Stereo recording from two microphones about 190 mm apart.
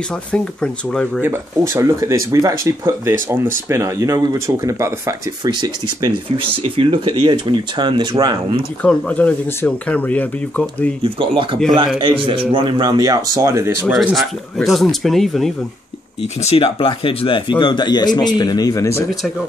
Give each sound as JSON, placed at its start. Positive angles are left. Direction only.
{"t": 0.3, "sound": "speech", "side_deg": 5}
{"t": 1.2, "sound": "speech", "side_deg": -15}
{"t": 8.8, "sound": "speech", "side_deg": 10}
{"t": 11.0, "sound": "speech", "side_deg": -25}
{"t": 13.9, "sound": "speech", "side_deg": 0}
{"t": 16.4, "sound": "speech", "side_deg": 30}